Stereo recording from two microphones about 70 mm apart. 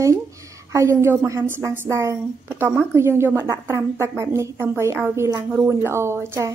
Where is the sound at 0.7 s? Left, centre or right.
Right.